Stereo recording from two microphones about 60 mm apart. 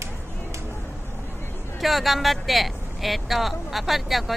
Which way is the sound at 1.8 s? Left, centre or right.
Centre.